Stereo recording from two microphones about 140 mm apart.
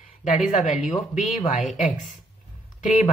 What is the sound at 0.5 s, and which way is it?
Speech, 60° left (ahead or behind).